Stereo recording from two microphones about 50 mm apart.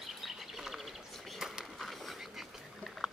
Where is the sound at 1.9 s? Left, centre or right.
Centre.